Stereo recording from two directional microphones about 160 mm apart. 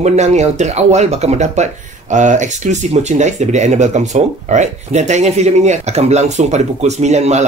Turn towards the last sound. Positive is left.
turn(degrees=-45)  # may be behind; listen again after turning